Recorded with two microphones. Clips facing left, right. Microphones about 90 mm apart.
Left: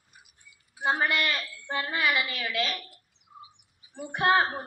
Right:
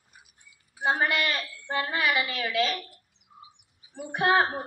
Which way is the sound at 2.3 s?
5° right (ahead or behind).